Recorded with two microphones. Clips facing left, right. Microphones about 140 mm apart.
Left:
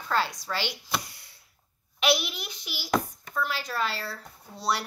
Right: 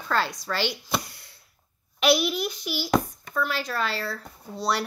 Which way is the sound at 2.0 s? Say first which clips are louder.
Right 5 dB; 45° right (ahead or behind).